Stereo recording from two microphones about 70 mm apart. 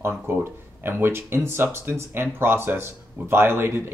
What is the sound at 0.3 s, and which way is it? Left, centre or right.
Speech, right.